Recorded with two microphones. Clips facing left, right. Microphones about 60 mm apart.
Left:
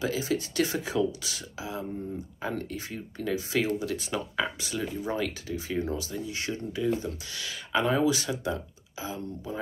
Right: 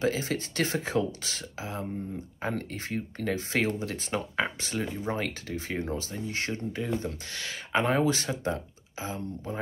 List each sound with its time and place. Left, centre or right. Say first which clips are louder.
0.0 s speech: even; right